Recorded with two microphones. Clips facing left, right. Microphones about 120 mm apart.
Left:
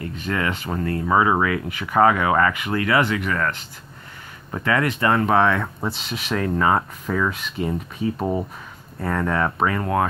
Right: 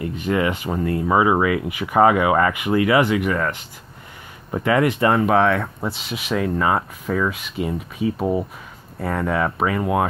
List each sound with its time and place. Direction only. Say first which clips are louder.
0.0 s speech: right 4 dB; 20° right (ahead or behind)
5.2 s speech: right 1 dB; 5° right (ahead or behind)